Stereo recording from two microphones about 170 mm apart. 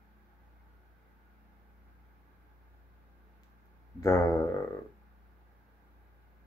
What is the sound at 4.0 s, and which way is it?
Speech, 15° left (ahead or behind).